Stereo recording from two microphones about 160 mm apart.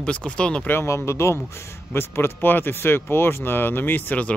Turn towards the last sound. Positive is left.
turn(degrees=10)  # may be behind; listen again after turning